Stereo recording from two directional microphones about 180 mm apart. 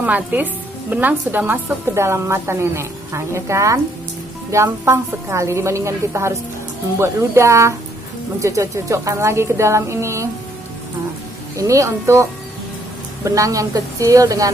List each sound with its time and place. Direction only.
0.0 s a woman's voice: 10° right (ahead or behind)
11.5 s a woman's voice: 15° right (ahead or behind)